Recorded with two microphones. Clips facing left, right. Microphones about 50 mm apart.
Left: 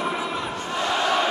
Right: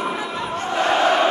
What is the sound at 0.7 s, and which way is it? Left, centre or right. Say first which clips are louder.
Crowd: right 5 dB; right.